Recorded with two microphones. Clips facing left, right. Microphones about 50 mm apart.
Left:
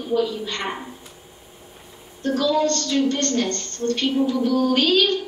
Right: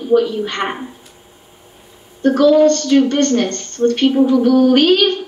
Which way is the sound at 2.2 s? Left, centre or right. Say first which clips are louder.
Right 10 dB; right.